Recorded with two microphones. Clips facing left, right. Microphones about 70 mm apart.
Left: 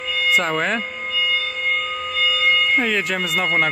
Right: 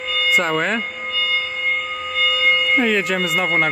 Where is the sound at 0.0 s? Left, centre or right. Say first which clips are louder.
Right 1 dB; centre.